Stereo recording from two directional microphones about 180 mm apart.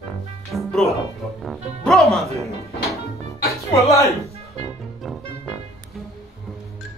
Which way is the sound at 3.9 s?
15° left (ahead or behind).